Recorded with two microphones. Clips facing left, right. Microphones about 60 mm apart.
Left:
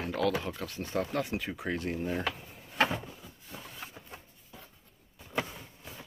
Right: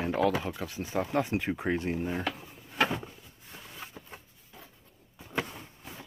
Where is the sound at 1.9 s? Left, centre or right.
Centre.